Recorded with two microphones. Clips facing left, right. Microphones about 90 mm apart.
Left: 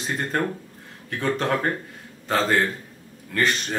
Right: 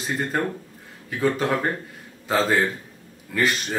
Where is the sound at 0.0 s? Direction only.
Centre (ahead or behind).